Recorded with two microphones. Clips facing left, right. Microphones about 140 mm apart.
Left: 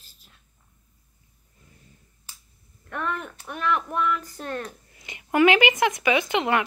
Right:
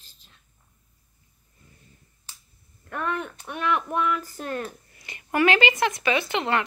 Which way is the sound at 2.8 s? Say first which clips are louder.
Right 1 dB; centre (ahead or behind).